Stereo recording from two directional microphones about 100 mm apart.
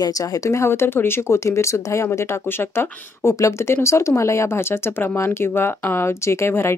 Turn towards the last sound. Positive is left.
turn(degrees=25)  # may be behind; listen again after turning